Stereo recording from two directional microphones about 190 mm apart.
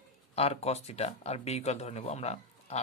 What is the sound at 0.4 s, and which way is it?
Speech, 35° left (ahead or behind).